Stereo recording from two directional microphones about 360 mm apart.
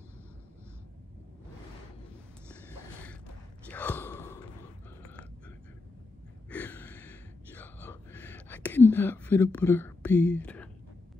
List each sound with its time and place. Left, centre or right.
3.6 s gasp: centre
6.5 s gasp: centre